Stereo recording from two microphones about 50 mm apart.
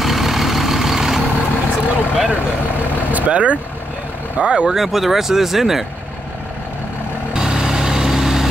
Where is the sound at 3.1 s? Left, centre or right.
Right.